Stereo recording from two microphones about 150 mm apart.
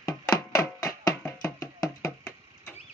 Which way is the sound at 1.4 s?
25° left (ahead or behind).